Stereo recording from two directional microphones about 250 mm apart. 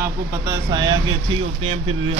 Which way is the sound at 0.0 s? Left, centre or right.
Centre.